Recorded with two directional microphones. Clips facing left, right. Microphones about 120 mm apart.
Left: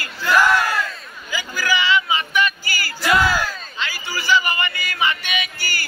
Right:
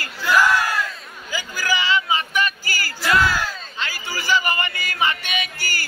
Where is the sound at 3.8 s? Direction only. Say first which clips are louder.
Left 2 dB; 45° right (ahead or behind).